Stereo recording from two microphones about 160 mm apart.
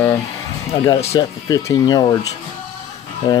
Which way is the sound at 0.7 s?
35° left (ahead or behind).